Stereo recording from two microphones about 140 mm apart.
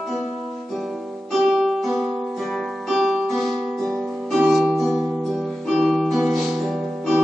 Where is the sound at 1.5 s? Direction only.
Centre (ahead or behind).